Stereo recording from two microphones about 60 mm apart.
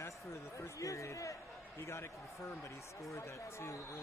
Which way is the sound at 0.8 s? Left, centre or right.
Left.